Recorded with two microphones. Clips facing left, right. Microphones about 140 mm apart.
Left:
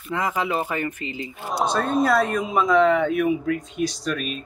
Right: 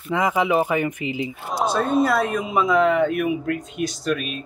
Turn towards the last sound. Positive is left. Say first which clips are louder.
# right 2 dB
turn(degrees=-5)  # may be behind; listen again after turning